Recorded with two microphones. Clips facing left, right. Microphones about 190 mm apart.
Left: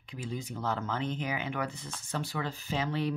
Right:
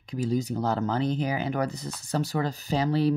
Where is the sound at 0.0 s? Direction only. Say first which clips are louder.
Right 11 dB; 40° right (ahead or behind).